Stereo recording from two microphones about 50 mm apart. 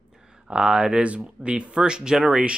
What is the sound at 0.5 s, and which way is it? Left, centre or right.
Speech, centre.